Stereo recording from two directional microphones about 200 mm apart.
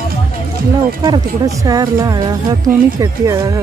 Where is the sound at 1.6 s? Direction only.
20° right (ahead or behind).